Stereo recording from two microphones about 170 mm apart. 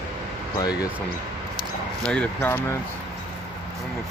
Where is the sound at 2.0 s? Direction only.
10° left (ahead or behind).